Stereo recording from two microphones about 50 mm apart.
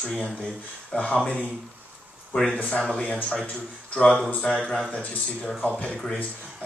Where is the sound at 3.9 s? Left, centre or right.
Left.